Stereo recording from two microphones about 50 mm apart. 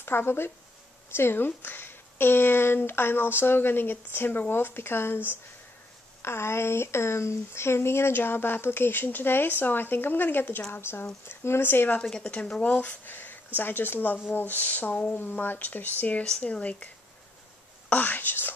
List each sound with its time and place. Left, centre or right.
0.0 s speech: left
6.2 s speech: left
12.0 s a woman's voice: centre
12.6 s speech: left
16.3 s a woman's voice: left